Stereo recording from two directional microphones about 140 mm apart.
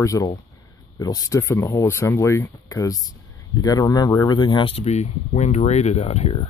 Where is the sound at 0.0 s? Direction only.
25° left (ahead or behind).